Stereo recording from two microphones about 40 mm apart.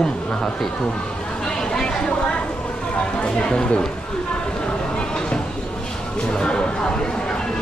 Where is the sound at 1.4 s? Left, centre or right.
Centre.